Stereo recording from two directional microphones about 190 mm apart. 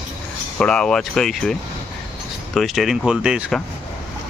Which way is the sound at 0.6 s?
5° left (ahead or behind).